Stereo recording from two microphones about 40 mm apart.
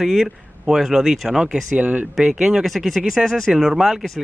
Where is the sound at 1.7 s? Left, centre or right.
Right.